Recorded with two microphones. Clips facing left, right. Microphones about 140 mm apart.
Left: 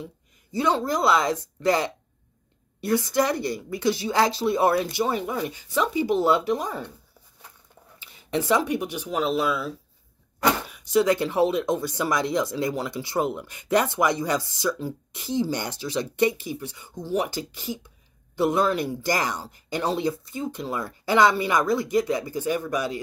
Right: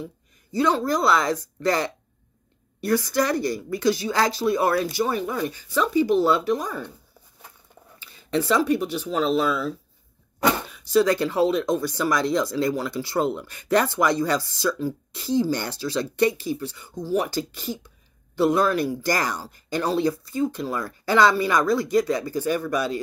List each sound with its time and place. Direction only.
0.0 s speech: 20° left (ahead or behind)
8.0 s speech: 20° left (ahead or behind)